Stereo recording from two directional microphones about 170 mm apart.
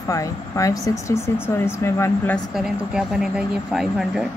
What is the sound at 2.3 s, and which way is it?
A woman's voice, 5° right (ahead or behind).